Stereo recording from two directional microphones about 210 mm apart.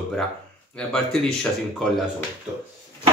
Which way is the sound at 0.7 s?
5° left (ahead or behind).